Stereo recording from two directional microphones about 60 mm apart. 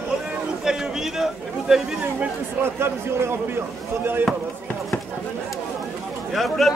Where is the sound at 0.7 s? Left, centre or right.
Centre.